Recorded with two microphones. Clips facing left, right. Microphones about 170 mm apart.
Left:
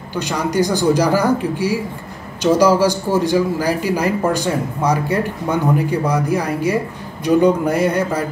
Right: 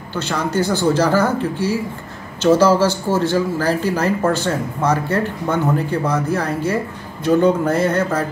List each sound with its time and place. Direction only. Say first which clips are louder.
0.1 s speech: left 1 dB; 15° left (ahead or behind)